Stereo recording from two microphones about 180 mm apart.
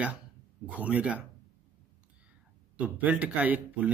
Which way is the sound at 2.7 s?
10° right (ahead or behind).